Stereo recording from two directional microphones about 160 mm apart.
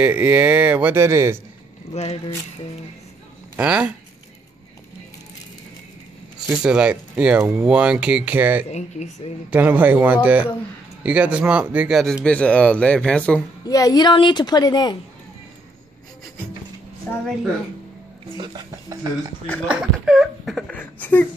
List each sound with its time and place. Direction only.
0.0 s speech: 10° right (ahead or behind)
2.0 s speech: 40° left (ahead or behind)
3.5 s speech: 5° right (ahead or behind)
6.5 s speech: 5° right (ahead or behind)
8.6 s speech: 45° left (ahead or behind)
9.5 s speech: 10° right (ahead or behind); by 13.4 s 5° left (ahead or behind)
13.7 s a woman's voice: 20° left (ahead or behind)
17.1 s speech: 10° left (ahead or behind)
18.4 s speech: 25° right (ahead or behind)
19.4 s speech: 10° left (ahead or behind)
19.7 s speech: 5° right (ahead or behind)